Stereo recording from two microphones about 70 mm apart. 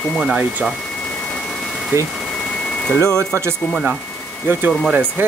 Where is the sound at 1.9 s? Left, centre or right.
Right.